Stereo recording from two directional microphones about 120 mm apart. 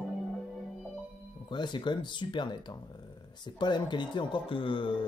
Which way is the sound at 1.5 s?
40° left (ahead or behind).